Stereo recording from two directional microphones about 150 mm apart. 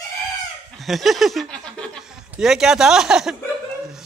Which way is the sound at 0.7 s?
Centre (ahead or behind).